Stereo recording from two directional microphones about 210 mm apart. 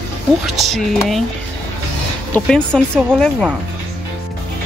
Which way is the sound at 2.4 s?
5° left (ahead or behind).